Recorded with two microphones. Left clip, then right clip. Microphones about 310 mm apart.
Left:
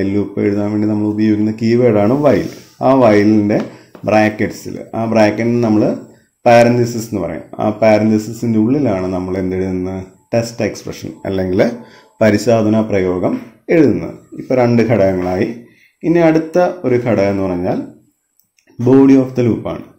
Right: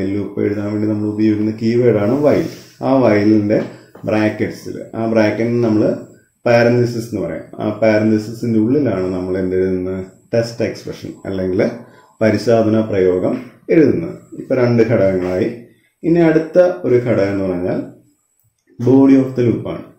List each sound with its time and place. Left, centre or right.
0.0 s a man's voice: left
14.5 s a man's voice: left
19.0 s a man's voice: left